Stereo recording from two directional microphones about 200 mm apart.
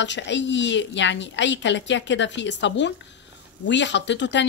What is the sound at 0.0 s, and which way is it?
Speech, 65° left (ahead or behind).